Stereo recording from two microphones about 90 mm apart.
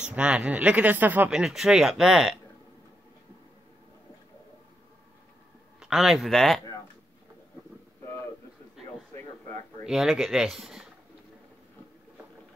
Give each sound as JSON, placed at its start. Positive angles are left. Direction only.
{"t": 0.0, "sound": "speech", "side_deg": -10}
{"t": 1.3, "sound": "speech", "side_deg": -5}
{"t": 5.8, "sound": "a man's voice", "side_deg": -5}
{"t": 9.8, "sound": "speech", "side_deg": -5}